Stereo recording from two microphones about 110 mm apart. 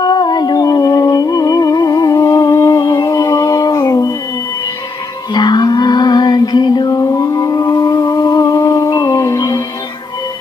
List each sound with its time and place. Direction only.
0.0 s music: 40° left (ahead or behind)
2.8 s a sound: 45° left (ahead or behind)
3.1 s music: 30° left (ahead or behind)
5.3 s music: 40° left (ahead or behind)